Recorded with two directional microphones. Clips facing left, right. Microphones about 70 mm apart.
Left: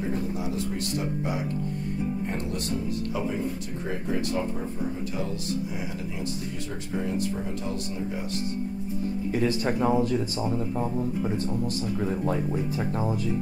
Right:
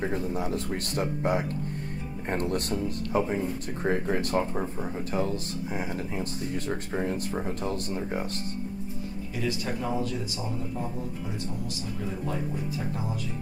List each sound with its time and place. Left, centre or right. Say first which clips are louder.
0.0 s speech: even; right
6.9 s speech: left 1 dB; right
9.3 s speech: left 5 dB; left